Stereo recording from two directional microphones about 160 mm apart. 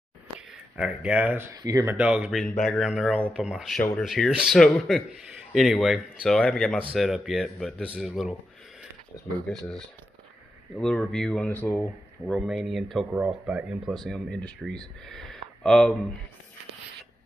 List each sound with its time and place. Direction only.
0.7 s speech: 5° right (ahead or behind); by 2.0 s 20° right (ahead or behind)
2.0 s speech: 10° right (ahead or behind)
9.5 s speech: 5° left (ahead or behind)
12.3 s speech: centre (ahead or behind)